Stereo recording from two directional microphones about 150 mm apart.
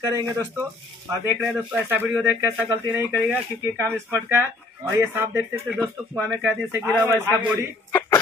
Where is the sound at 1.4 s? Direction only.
5° right (ahead or behind).